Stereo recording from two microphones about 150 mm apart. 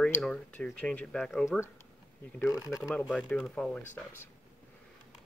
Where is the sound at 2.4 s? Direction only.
20° left (ahead or behind).